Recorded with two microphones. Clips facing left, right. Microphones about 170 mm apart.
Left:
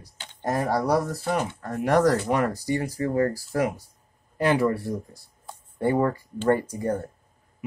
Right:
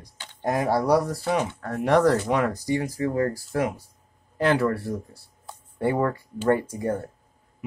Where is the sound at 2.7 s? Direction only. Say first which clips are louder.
Left 1 dB; 40° left (ahead or behind).